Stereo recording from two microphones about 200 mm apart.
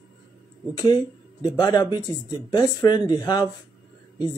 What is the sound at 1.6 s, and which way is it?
Speech, 20° left (ahead or behind).